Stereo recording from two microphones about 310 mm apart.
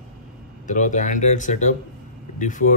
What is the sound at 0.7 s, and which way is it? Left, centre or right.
Speech, left.